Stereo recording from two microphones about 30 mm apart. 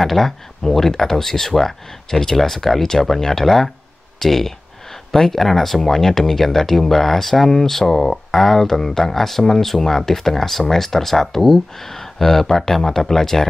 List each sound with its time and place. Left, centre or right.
0.0 s speech: centre